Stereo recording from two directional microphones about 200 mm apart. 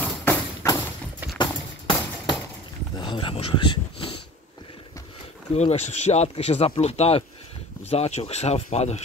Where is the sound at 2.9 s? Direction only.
25° left (ahead or behind).